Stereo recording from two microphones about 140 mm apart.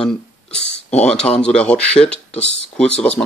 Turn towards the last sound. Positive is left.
turn(degrees=10)  # may be behind; listen again after turning